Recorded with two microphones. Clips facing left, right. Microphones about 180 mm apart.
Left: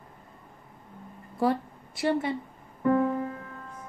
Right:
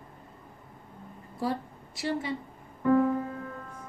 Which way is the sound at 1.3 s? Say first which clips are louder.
Left 5 dB; 60° left (ahead or behind).